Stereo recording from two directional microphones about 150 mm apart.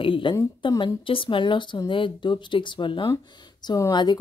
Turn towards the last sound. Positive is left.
turn(degrees=25)  # may be behind; listen again after turning